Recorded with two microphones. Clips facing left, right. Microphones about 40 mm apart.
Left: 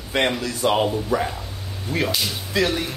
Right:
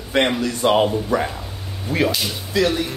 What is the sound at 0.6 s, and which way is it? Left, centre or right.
Speech, right.